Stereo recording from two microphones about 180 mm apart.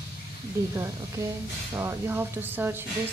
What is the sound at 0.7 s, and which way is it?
A woman's voice, 15° right (ahead or behind).